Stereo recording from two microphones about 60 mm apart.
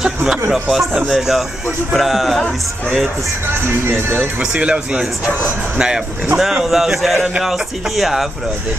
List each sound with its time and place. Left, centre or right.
0.0 s a man's voice: centre
4.4 s speech: centre
6.3 s a man's voice: centre